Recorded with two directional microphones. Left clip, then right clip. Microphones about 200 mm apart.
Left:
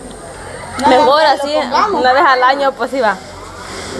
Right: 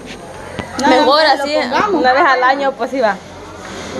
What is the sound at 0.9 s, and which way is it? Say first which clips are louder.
A woman's voice: left 1 dB; 5° left (ahead or behind).